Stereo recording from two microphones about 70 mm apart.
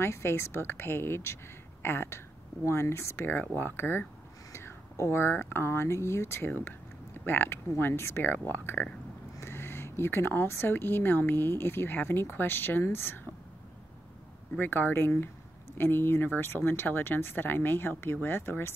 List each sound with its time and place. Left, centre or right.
0.0 s a woman's voice: left
3.3 s speech: left
14.5 s speech: left